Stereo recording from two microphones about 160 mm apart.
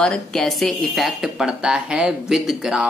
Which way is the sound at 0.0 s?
5° left (ahead or behind).